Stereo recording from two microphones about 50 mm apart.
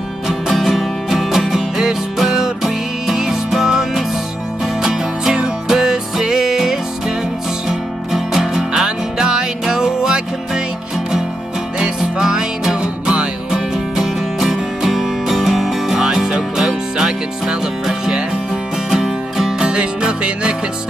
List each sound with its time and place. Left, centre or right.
0.3 s music: centre
8.1 s music: centre
11.8 s music: centre
13.5 s music: centre